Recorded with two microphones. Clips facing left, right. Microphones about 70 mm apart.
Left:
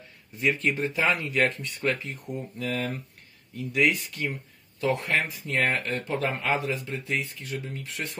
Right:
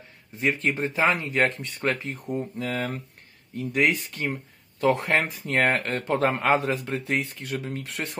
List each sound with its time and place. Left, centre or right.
0.4 s speech: right